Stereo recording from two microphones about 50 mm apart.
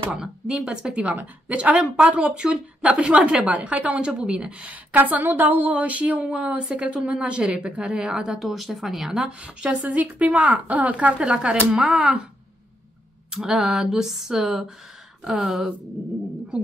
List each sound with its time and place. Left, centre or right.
0.1 s speech: centre
4.9 s speech: right; by 8.4 s centre
8.4 s speech: centre
9.4 s speech: right
13.3 s speech: centre